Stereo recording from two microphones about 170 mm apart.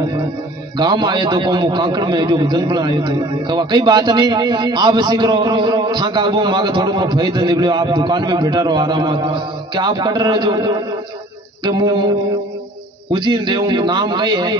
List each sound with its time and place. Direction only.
0.7 s a man's voice: 25° right (ahead or behind)
13.1 s a man's voice: 25° right (ahead or behind)